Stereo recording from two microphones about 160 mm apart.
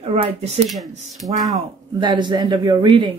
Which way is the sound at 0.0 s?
35° right (ahead or behind).